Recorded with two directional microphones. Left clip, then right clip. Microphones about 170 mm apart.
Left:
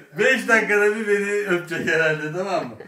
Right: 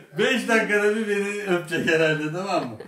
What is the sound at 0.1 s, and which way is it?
A man's voice, 10° left (ahead or behind).